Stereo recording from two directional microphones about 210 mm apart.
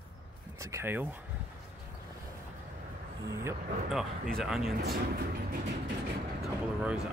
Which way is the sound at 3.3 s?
10° right (ahead or behind).